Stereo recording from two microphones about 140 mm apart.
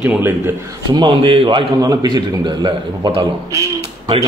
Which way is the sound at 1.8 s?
25° right (ahead or behind).